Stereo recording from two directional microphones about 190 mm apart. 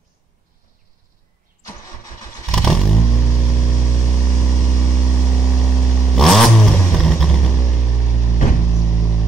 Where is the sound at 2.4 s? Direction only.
5° left (ahead or behind).